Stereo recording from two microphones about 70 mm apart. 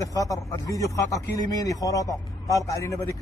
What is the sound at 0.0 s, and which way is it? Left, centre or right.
A man's voice, left.